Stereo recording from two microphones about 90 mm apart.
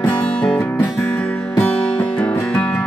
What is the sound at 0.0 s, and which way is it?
Music, 10° left (ahead or behind).